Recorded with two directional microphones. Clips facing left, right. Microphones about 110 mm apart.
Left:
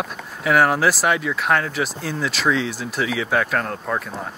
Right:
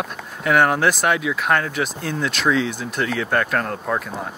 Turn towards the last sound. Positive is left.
turn(degrees=0)  # may be behind; listen again after turning